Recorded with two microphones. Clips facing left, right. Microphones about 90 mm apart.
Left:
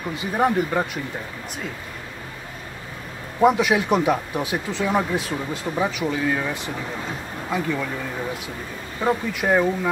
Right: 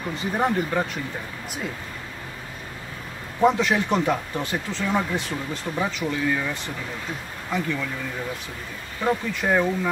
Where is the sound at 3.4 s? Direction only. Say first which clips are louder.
Left 2 dB; 15° left (ahead or behind).